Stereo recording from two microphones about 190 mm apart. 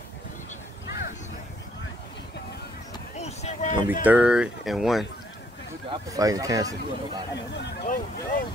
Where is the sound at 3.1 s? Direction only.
35° left (ahead or behind).